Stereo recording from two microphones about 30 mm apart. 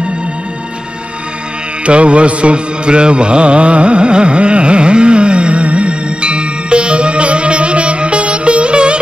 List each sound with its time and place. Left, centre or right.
1.9 s mantra: right